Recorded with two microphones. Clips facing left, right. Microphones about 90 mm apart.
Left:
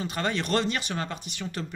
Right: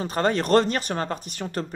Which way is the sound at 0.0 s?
40° right (ahead or behind).